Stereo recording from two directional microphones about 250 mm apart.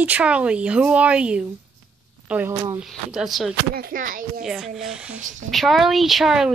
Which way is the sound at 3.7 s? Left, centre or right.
Right.